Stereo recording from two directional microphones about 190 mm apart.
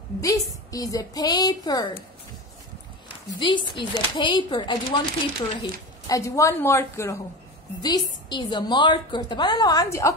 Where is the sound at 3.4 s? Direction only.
25° left (ahead or behind).